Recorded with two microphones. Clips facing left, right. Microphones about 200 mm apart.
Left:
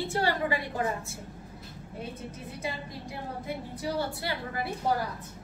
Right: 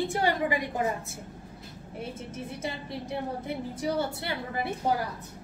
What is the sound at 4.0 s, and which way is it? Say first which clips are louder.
Speech: right 1 dB; 20° right (ahead or behind).